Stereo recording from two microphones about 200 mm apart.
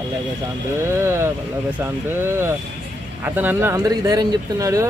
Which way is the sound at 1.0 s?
15° right (ahead or behind).